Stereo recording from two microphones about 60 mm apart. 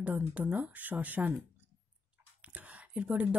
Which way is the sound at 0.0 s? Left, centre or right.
Right.